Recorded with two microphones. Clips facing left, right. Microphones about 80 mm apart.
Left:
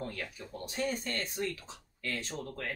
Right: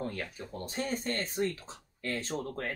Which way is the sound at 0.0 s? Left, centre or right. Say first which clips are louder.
Right 3 dB; right.